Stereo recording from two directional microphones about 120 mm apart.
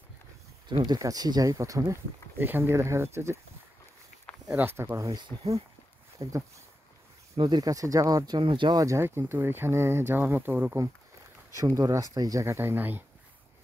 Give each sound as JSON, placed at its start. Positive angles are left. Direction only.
{"t": 0.7, "sound": "speech", "side_deg": -40}
{"t": 4.5, "sound": "speech", "side_deg": -15}
{"t": 7.3, "sound": "speech", "side_deg": -40}
{"t": 11.5, "sound": "speech", "side_deg": -25}